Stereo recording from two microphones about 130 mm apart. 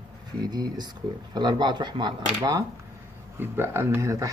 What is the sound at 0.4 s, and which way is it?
Speech, 30° right (ahead or behind).